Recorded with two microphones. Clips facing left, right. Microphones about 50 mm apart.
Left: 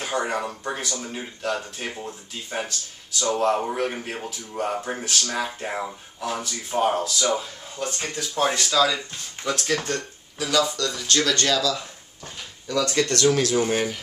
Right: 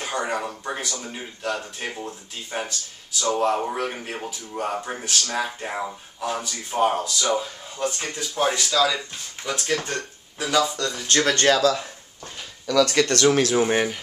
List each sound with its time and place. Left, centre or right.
0.0 s speech: centre
9.8 s speech: right
12.6 s speech: right
13.0 s speech: right